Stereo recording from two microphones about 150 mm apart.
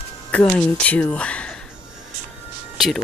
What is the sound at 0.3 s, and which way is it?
Speech, 10° left (ahead or behind).